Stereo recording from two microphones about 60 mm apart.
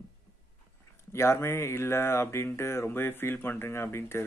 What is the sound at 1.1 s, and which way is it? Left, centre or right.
Speech, left.